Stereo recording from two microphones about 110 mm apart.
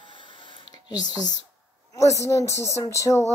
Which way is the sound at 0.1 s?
50° left (ahead or behind).